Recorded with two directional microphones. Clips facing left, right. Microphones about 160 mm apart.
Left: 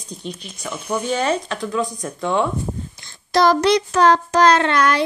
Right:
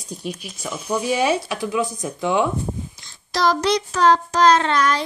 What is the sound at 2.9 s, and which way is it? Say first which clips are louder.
Child singing: left 9 dB; 55° left (ahead or behind).